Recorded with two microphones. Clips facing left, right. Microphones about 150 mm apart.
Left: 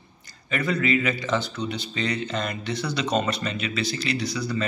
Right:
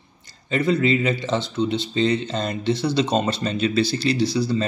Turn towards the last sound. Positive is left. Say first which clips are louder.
# right 6 dB
turn(degrees=-30)  # may be behind; listen again after turning